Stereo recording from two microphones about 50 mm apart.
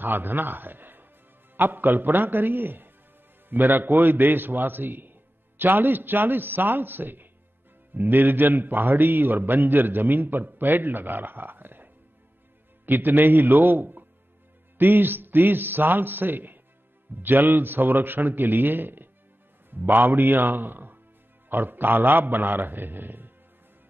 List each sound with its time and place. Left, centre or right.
0.0 s a man's voice: right